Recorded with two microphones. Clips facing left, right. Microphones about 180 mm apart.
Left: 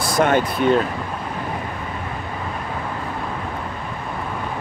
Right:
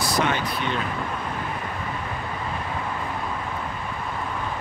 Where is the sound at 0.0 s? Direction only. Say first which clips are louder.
Left 6 dB; 50° left (ahead or behind).